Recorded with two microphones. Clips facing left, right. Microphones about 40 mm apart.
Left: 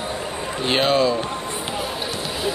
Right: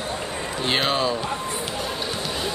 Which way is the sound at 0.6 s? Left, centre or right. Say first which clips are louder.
Left 3 dB; centre.